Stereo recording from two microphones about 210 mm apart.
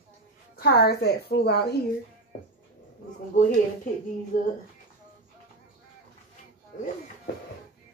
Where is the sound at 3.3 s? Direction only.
40° left (ahead or behind).